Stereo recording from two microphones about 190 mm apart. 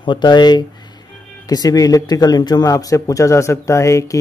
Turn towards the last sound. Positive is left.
turn(degrees=15)  # may be behind; listen again after turning